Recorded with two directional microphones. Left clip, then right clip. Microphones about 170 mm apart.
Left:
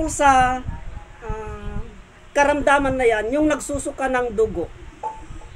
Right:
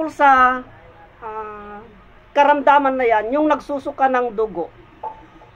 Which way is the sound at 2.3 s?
20° left (ahead or behind).